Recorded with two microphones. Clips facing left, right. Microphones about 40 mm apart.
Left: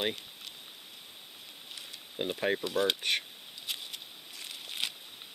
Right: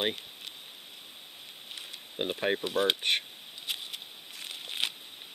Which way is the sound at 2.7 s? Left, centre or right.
Centre.